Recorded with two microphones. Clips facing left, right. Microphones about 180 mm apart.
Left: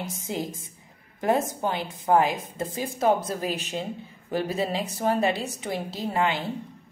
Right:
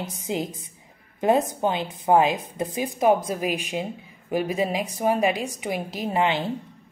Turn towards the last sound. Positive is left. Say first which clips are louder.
# right 2 dB
turn(degrees=-20)  # may be behind; listen again after turning